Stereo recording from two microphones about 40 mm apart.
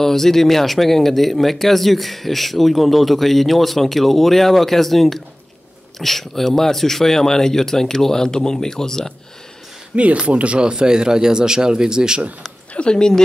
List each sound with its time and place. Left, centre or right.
0.0 s speech: centre
9.9 s speech: right
10.6 s speech: right
12.7 s speech: left